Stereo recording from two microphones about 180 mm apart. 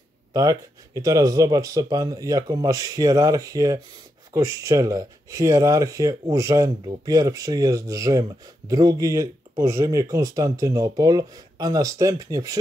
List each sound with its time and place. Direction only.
0.3 s speech: 20° right (ahead or behind)